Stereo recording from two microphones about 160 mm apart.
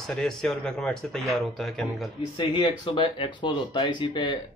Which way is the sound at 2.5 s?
30° left (ahead or behind).